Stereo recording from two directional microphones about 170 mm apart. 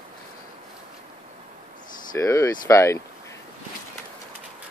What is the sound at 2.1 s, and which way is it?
Speech, 15° left (ahead or behind).